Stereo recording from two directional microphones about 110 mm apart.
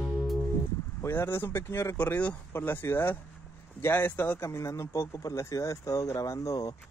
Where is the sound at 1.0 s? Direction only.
20° left (ahead or behind).